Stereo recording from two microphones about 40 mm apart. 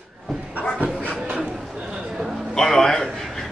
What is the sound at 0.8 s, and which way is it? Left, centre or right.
Dog, right.